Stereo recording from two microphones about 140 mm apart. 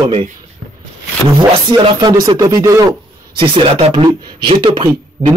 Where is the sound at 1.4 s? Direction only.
35° right (ahead or behind).